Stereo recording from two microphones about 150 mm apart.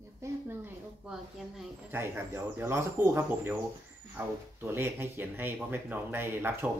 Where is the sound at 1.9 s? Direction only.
15° right (ahead or behind).